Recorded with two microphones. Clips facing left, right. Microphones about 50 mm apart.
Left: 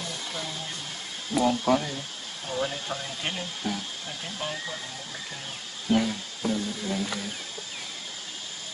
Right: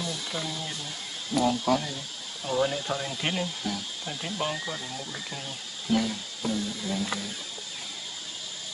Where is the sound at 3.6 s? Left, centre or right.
Centre.